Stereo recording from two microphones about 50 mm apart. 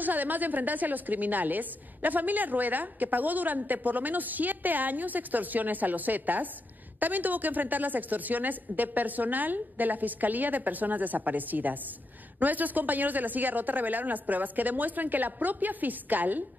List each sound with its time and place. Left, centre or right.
0.0 s a woman's voice: right